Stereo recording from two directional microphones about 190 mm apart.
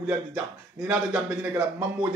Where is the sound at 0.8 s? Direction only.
5° right (ahead or behind).